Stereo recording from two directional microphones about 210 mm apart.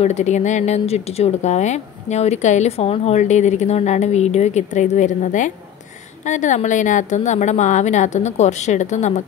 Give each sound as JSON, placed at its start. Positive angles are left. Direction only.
{"t": 0.0, "sound": "speech", "side_deg": 35}